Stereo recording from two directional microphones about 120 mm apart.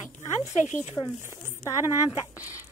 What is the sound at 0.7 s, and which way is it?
Speech, 90° left.